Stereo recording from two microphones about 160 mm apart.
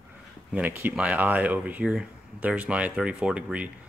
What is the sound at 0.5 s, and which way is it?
Speech, 10° right (ahead or behind).